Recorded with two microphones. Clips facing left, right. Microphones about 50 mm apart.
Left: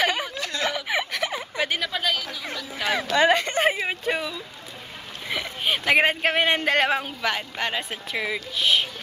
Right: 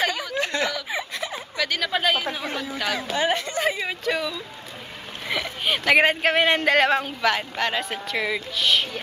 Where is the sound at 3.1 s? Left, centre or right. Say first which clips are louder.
Left 6 dB; left.